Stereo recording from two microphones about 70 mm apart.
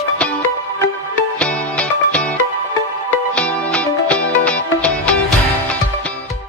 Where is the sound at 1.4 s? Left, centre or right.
Centre.